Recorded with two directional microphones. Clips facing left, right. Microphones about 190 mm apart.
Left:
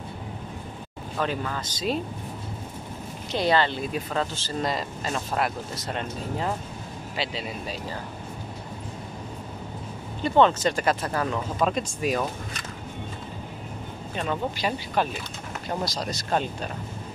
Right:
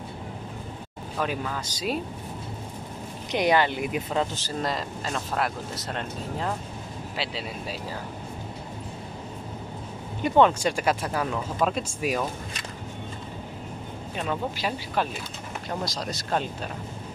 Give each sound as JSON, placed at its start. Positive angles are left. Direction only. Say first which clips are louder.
{"t": 1.1, "sound": "speech", "louder": "left 1 dB", "side_deg": -5}
{"t": 3.3, "sound": "speech", "louder": "right 1 dB", "side_deg": -15}
{"t": 4.6, "sound": "speech", "louder": "left 1 dB", "side_deg": 0}
{"t": 10.2, "sound": "speech", "louder": "even", "side_deg": -10}
{"t": 14.1, "sound": "speech", "louder": "left 1 dB", "side_deg": -5}